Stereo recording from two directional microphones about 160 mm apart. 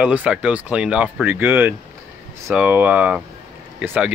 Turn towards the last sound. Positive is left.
turn(degrees=-5)  # may be behind; listen again after turning